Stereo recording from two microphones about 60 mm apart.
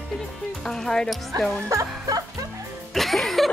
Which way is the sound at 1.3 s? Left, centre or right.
Right.